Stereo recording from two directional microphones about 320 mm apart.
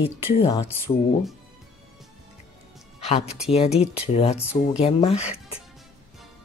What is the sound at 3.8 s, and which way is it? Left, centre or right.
Speech, centre.